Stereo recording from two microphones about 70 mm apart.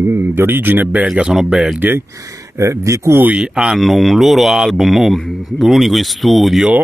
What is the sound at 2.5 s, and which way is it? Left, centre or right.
Speech, right.